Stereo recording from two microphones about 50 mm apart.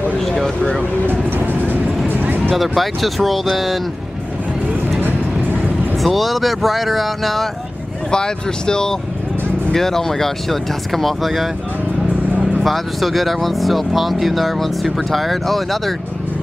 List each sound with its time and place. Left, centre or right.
1.0 s vehicle: right
2.1 s music: right
2.5 s speech: centre
5.0 s vehicle: right
6.0 s speech: centre
8.1 s speech: centre
12.6 s speech: centre